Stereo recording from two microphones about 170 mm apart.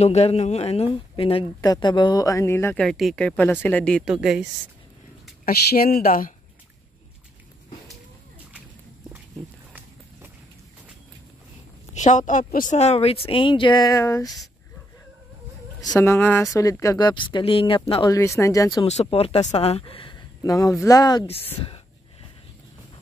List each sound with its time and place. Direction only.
0.0 s speech: 40° left (ahead or behind); by 2.8 s 15° left (ahead or behind)
2.8 s speech: centre (ahead or behind)
5.4 s speech: 65° left (ahead or behind)
9.7 s run: 10° right (ahead or behind)
11.9 s a woman's voice: 45° left (ahead or behind)
12.7 s speech: 40° left (ahead or behind); by 14.3 s 20° left (ahead or behind)
16.0 s speech: 15° left (ahead or behind); by 18.1 s 30° left (ahead or behind)
18.1 s speech: 15° left (ahead or behind)
18.9 s speech: 40° left (ahead or behind); by 21.3 s 20° left (ahead or behind)